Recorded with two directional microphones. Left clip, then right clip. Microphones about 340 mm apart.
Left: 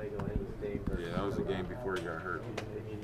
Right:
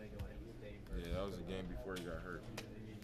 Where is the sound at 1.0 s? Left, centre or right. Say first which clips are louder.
Left 8 dB; left.